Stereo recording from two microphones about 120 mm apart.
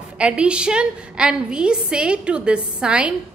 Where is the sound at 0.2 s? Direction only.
10° right (ahead or behind).